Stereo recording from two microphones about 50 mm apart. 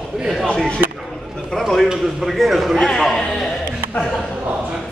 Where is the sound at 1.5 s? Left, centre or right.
Centre.